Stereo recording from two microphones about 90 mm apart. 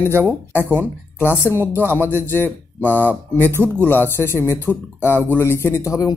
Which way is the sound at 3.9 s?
25° left (ahead or behind).